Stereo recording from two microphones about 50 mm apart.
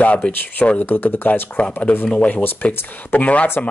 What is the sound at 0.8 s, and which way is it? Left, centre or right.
Speech, left.